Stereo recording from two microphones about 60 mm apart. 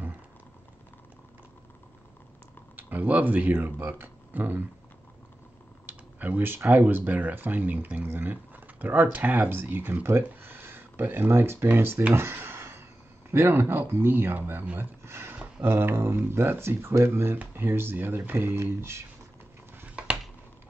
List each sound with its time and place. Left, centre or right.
2.7 s speech: right
5.9 s speech: right
12.1 s a sound: right
13.3 s speech: right